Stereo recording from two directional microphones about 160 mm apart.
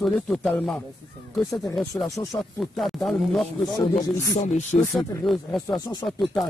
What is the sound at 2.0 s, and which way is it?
Speech, 20° left (ahead or behind).